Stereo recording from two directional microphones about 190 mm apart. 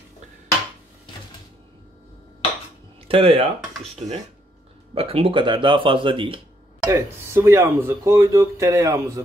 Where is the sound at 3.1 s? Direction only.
30° right (ahead or behind).